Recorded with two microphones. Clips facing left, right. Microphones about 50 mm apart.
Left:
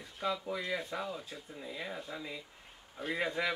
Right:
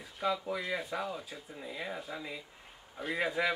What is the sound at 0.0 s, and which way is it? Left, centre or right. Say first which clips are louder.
Speech: right 2 dB; centre.